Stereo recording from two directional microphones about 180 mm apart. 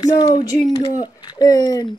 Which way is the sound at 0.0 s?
25° left (ahead or behind).